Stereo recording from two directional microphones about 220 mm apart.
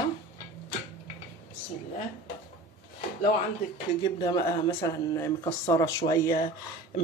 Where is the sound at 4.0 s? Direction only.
20° left (ahead or behind).